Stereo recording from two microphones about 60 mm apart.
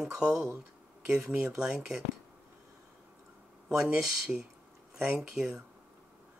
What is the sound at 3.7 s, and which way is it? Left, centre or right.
Speech, centre.